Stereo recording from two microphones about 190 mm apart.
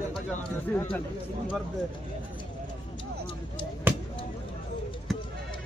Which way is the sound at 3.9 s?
10° right (ahead or behind).